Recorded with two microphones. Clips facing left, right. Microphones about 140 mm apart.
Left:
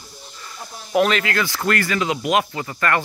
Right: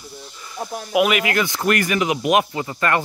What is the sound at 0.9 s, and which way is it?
Speech, 10° right (ahead or behind).